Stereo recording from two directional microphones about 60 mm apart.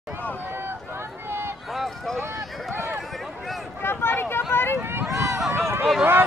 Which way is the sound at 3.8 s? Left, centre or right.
Left.